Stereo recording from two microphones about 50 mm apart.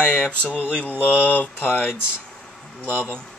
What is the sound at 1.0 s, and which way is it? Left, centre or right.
Mantra, left.